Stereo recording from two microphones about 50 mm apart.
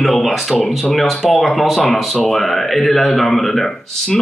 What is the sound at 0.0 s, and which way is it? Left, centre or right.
Speech, centre.